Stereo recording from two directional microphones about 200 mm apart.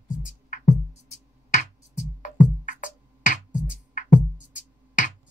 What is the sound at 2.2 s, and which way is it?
Music, 40° left (ahead or behind).